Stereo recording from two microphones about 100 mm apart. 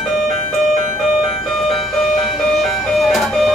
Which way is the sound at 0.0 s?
Centre (ahead or behind).